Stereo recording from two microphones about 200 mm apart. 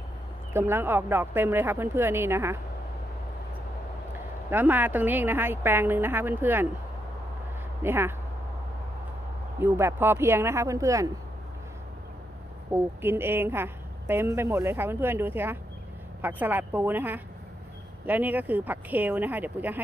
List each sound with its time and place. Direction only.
0.5 s speech: 10° right (ahead or behind)
4.5 s speech: 10° right (ahead or behind)
7.8 s speech: 10° right (ahead or behind)
9.6 s speech: 10° right (ahead or behind)
12.7 s speech: 10° right (ahead or behind)